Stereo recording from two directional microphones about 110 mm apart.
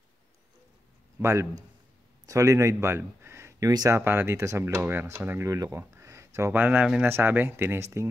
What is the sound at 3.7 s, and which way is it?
Speech, 35° right (ahead or behind).